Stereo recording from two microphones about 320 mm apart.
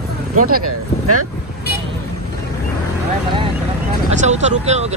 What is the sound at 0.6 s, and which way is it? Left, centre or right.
Speech, right.